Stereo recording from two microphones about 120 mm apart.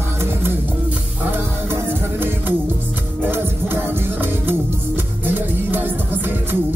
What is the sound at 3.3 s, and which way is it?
Music, 20° right (ahead or behind).